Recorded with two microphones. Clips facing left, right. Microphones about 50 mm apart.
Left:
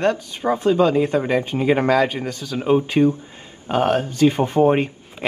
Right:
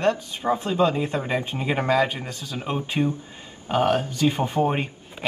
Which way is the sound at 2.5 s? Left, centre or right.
Centre.